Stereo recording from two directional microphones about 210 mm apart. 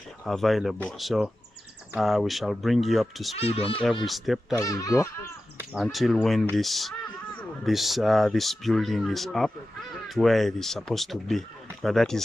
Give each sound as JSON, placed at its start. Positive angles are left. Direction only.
{"t": 0.2, "sound": "speech", "side_deg": 0}
{"t": 3.3, "sound": "speech", "side_deg": 30}
{"t": 4.0, "sound": "speech", "side_deg": 0}
{"t": 4.6, "sound": "speech", "side_deg": 15}
{"t": 5.6, "sound": "speech", "side_deg": -5}